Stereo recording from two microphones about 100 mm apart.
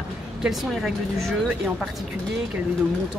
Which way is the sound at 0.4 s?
5° right (ahead or behind).